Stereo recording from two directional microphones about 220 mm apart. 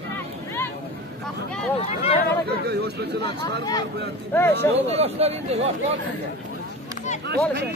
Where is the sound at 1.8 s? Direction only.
30° left (ahead or behind).